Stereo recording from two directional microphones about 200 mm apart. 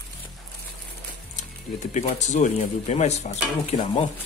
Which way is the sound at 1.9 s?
35° left (ahead or behind).